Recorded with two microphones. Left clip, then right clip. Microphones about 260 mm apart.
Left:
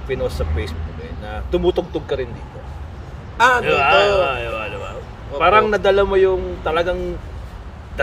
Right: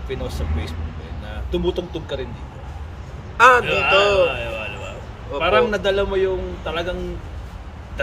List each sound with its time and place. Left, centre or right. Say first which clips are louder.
0.1 s a man's voice: left 6 dB; centre
3.3 s a man's voice: right 2 dB; centre
3.6 s a man's voice: left 2 dB; centre